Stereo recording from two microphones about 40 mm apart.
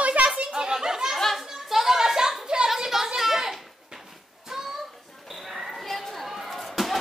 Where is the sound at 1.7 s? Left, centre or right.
Centre.